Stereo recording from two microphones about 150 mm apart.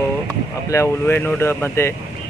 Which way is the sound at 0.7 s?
20° left (ahead or behind).